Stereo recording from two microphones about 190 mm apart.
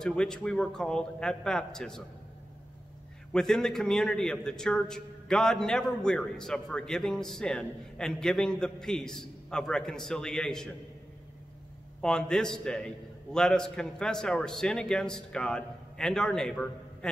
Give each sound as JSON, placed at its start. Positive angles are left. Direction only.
{"t": 0.0, "sound": "a man's voice", "side_deg": 5}
{"t": 3.3, "sound": "a man's voice", "side_deg": 5}
{"t": 12.0, "sound": "a man's voice", "side_deg": 5}